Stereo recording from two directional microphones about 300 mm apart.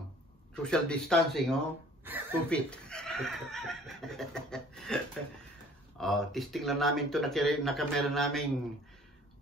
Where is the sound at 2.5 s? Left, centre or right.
Centre.